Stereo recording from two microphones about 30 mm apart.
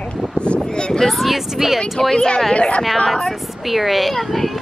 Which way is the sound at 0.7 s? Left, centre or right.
Left.